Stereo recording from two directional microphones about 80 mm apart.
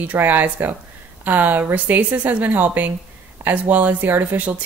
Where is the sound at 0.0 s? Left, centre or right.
Right.